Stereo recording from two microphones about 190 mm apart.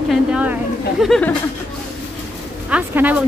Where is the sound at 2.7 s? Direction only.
10° right (ahead or behind).